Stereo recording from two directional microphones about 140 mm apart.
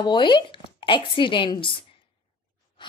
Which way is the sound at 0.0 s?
35° left (ahead or behind).